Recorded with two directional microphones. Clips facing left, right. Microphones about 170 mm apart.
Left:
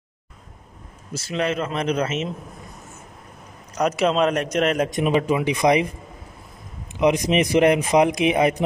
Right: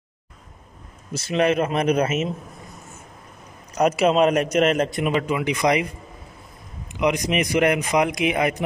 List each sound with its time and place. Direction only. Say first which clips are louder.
1.4 s a man's voice: right 4 dB; 15° right (ahead or behind)
3.7 s a man's voice: right 2 dB; 5° right (ahead or behind)
4.9 s a man's voice: left 3 dB; 20° left (ahead or behind)
7.0 s a man's voice: left 3 dB; 25° left (ahead or behind)